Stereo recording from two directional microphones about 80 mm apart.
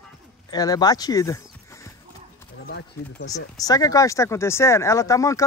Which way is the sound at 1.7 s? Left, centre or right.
Left.